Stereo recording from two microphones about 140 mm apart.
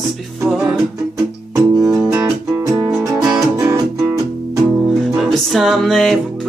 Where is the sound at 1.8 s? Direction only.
5° right (ahead or behind).